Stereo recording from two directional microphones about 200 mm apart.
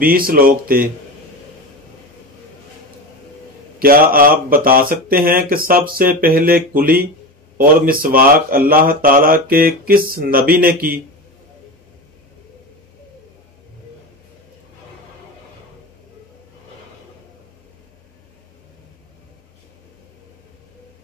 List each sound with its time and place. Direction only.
0.0 s speech: 45° right (ahead or behind)
3.8 s speech: 45° right (ahead or behind)